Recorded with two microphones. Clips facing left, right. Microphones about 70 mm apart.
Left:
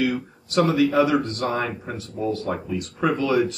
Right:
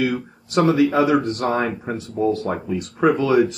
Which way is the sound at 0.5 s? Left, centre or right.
Right.